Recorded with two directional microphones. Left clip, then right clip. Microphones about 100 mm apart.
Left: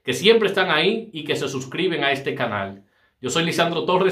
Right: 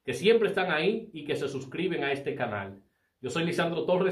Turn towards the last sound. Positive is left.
turn(degrees=15)  # may be behind; listen again after turning